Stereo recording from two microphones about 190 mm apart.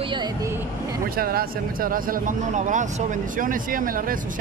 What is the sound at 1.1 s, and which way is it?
A man's voice, 50° right (ahead or behind).